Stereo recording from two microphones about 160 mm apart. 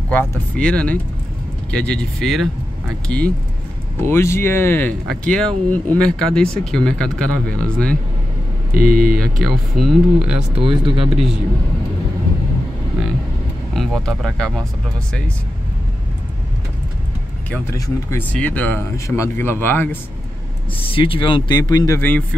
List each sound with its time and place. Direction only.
0.6 s speech: 5° left (ahead or behind)
10.5 s speech: 35° right (ahead or behind)
11.1 s speech: 5° right (ahead or behind)
13.7 s speech: centre (ahead or behind)
17.5 s speech: 15° left (ahead or behind)
20.8 s speech: 35° left (ahead or behind); by 22.2 s 15° left (ahead or behind)